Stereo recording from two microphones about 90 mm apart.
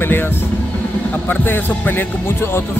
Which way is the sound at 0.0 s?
25° left (ahead or behind).